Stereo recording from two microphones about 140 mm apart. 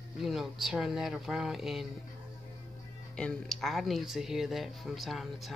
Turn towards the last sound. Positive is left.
turn(degrees=0)  # may be behind; listen again after turning